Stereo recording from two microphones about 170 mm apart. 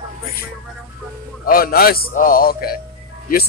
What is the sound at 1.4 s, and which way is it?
A man's voice, 60° left (ahead or behind).